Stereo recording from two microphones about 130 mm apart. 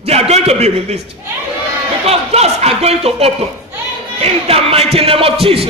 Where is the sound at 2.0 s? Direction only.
50° right (ahead or behind).